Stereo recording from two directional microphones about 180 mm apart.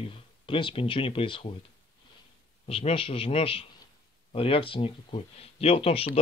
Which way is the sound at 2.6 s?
30° left (ahead or behind).